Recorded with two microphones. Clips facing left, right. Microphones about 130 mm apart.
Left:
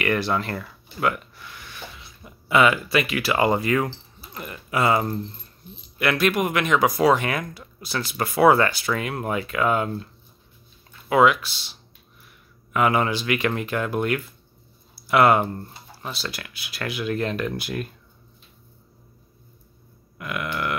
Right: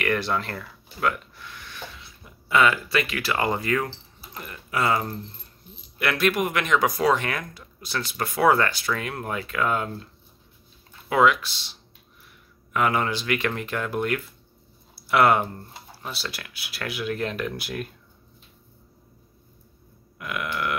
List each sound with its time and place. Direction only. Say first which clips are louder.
0.0 s speech: left 2 dB; 5° left (ahead or behind)
5.9 s speech: left 2 dB; centre (ahead or behind)
11.1 s speech: left 2 dB; 5° left (ahead or behind)
12.7 s speech: left 3 dB; 5° left (ahead or behind)
20.2 s a sound: left 1 dB; centre (ahead or behind)